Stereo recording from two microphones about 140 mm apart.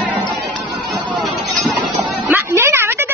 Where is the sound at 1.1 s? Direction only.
Centre (ahead or behind).